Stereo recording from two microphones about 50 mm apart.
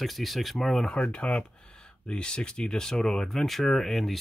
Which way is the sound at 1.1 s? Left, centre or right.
Left.